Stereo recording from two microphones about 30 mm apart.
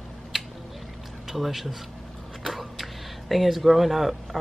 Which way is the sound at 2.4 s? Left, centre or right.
Centre.